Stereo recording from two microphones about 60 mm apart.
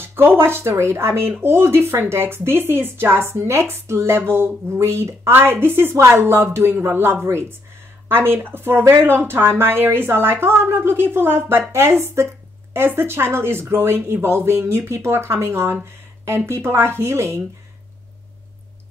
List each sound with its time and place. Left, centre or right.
0.0 s speech: right